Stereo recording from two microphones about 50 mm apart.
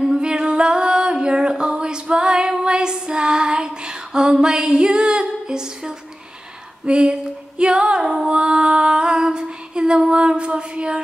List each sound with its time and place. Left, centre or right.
0.0 s singing: centre
6.9 s female singing: centre